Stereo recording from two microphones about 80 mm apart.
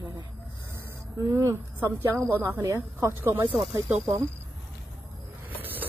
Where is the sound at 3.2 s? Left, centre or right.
Right.